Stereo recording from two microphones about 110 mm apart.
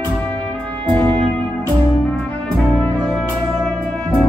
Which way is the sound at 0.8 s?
10° left (ahead or behind).